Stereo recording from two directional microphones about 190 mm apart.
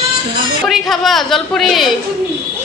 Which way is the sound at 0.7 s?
Centre (ahead or behind).